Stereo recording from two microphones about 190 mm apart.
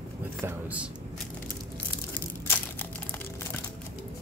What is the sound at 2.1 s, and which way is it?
Crushing, 10° left (ahead or behind).